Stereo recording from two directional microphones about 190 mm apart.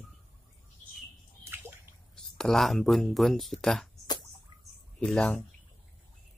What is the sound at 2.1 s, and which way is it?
Speech, 5° left (ahead or behind).